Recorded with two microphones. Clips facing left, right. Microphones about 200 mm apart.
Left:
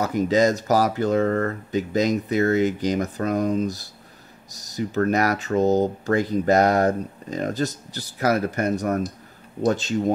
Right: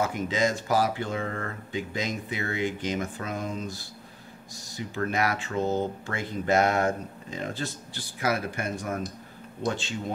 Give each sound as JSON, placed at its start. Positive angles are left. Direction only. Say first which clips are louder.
{"t": 0.0, "sound": "speech", "louder": "left 7 dB", "side_deg": 40}